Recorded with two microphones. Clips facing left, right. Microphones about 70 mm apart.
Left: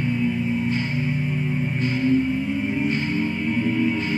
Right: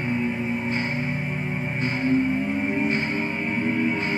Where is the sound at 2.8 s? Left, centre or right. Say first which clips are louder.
Left 1 dB; right.